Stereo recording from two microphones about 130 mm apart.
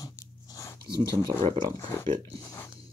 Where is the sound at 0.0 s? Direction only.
30° left (ahead or behind).